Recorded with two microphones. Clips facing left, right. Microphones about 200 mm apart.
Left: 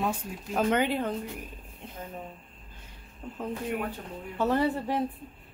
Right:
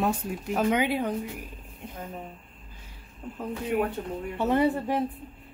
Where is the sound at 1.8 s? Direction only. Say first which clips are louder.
Right 2 dB; 10° right (ahead or behind).